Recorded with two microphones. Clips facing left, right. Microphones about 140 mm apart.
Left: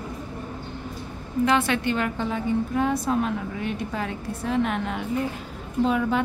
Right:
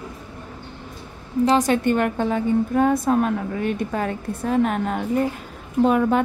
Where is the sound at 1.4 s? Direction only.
40° right (ahead or behind).